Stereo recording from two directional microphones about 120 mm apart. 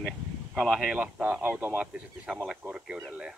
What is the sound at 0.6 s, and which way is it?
Speech, centre (ahead or behind).